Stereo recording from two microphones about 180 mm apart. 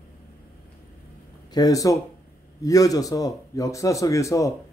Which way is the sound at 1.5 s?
20° left (ahead or behind).